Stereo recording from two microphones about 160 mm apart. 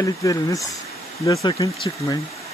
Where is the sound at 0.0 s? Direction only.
20° left (ahead or behind).